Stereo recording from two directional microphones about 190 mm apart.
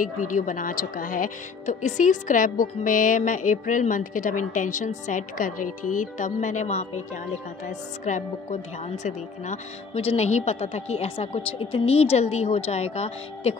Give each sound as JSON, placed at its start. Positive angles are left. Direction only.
{"t": 0.2, "sound": "a woman's voice", "side_deg": 45}